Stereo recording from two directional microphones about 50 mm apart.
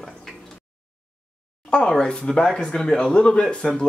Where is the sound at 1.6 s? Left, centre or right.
Centre.